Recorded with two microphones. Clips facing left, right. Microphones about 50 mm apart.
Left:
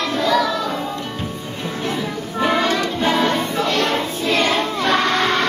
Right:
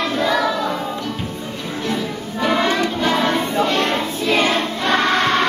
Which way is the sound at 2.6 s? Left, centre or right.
Centre.